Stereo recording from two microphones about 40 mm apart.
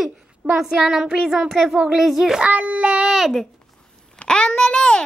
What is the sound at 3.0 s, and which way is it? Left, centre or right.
Speech, centre.